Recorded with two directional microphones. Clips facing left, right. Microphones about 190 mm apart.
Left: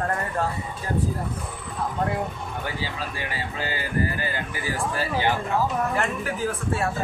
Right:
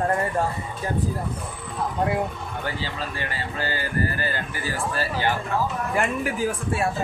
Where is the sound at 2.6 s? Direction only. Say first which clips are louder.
Right 2 dB; 10° left (ahead or behind).